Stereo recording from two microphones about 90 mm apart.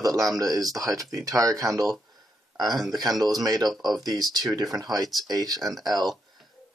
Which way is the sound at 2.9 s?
50° right (ahead or behind).